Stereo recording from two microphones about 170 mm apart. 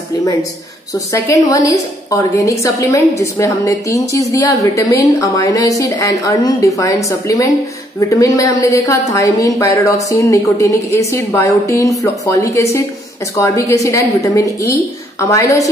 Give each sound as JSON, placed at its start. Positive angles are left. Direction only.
{"t": 0.2, "sound": "a woman's voice", "side_deg": 20}